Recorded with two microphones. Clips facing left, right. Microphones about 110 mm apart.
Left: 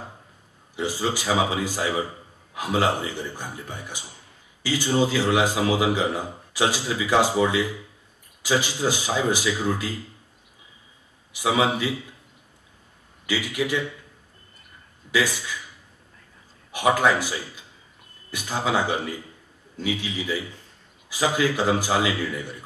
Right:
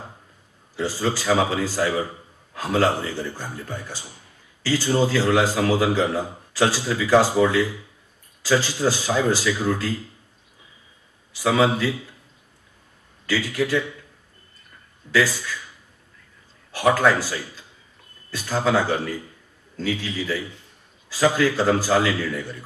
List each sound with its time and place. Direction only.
0.7 s a man's voice: 15° left (ahead or behind)
11.3 s a man's voice: 15° left (ahead or behind)
13.3 s a man's voice: 15° left (ahead or behind)
15.0 s a man's voice: 15° left (ahead or behind)
16.7 s a man's voice: 15° left (ahead or behind)